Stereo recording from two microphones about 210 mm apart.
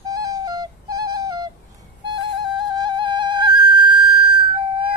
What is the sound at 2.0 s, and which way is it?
Music, 20° right (ahead or behind).